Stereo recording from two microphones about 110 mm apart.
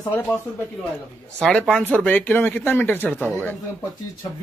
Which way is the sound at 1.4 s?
5° left (ahead or behind).